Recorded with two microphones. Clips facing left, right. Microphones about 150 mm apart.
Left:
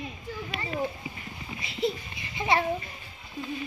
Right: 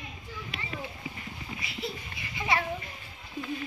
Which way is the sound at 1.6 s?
25° left (ahead or behind).